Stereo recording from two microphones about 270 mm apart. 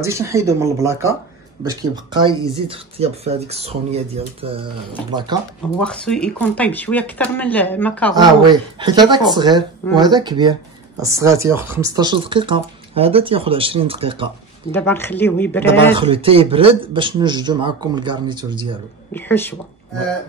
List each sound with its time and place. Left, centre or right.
0.0 s speech: centre
5.8 s speech: centre
8.1 s speech: centre
14.7 s speech: centre
15.9 s speech: centre
19.1 s speech: centre